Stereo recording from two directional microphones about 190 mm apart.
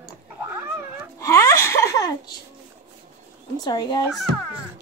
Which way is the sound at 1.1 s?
15° left (ahead or behind).